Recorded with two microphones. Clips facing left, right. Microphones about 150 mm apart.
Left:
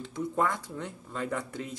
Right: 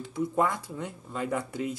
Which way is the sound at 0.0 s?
5° right (ahead or behind).